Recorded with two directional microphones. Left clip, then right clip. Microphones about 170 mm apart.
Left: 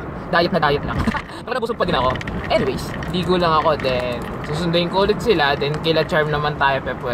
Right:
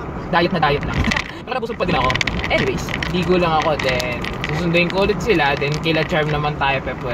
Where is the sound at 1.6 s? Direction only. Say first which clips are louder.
Even; 15° left (ahead or behind).